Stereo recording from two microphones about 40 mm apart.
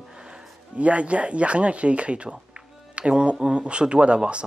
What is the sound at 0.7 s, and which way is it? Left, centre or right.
Speech, right.